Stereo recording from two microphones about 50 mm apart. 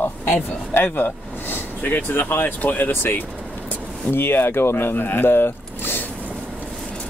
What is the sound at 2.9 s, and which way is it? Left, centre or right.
A man's voice, left.